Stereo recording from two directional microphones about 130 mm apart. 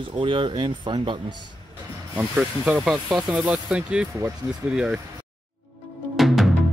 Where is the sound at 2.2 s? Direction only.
10° right (ahead or behind).